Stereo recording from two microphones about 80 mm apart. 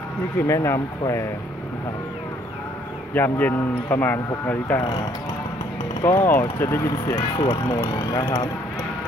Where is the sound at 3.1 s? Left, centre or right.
Left.